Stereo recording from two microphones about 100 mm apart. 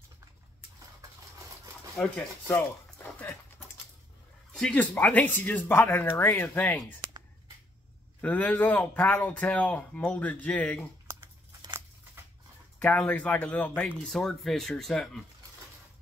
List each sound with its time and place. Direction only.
2.1 s a sound: 20° left (ahead or behind)
4.5 s speech: 10° left (ahead or behind)
8.2 s speech: 15° left (ahead or behind)
12.7 s speech: 15° left (ahead or behind)
13.9 s speech: 5° left (ahead or behind)